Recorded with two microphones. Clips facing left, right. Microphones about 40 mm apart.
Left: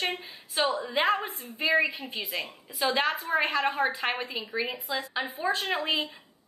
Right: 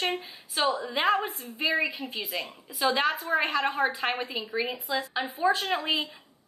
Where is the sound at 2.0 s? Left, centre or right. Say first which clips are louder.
Right 1 dB; left.